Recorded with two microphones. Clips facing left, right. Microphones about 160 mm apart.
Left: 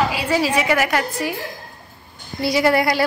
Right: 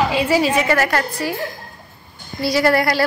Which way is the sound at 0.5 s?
10° left (ahead or behind).